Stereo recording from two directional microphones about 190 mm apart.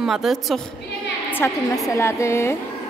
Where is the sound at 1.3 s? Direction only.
15° left (ahead or behind).